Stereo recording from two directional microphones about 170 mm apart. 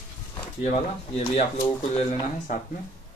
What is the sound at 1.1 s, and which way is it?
Speech, 35° left (ahead or behind).